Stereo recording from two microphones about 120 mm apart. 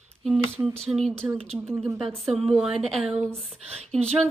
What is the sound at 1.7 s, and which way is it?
Speech, 20° right (ahead or behind).